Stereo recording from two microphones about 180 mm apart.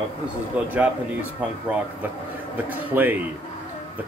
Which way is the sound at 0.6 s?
5° right (ahead or behind).